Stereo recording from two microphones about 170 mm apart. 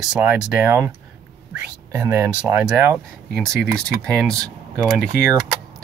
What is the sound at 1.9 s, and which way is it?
Speech, 15° right (ahead or behind).